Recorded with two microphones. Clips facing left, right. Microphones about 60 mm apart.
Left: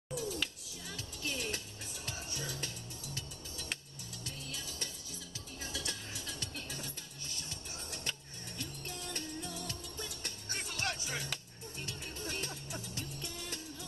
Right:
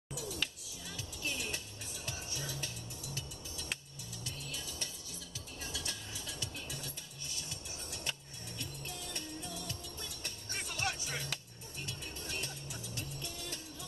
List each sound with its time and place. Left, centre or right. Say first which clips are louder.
0.1 s music: left 3 dB; centre
0.9 s music: even; centre
5.6 s music: left 2 dB; centre
8.1 s music: even; centre
12.3 s music: left 2 dB; left